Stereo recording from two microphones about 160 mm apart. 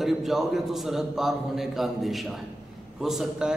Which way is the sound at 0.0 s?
Centre (ahead or behind).